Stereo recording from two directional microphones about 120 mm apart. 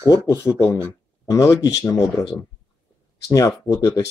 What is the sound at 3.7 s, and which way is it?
Speech, 30° left (ahead or behind).